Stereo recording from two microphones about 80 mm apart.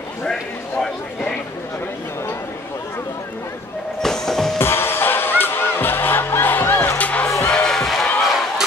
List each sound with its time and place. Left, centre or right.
0.2 s a sound: centre
4.0 s music: centre
4.6 s honk: left
7.4 s music: centre